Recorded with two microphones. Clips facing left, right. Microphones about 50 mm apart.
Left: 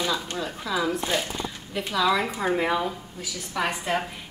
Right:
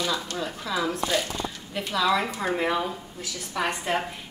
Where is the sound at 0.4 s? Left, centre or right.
Centre.